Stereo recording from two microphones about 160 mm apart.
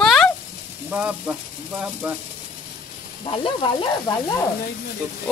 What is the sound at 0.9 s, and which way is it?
Speech, 10° right (ahead or behind).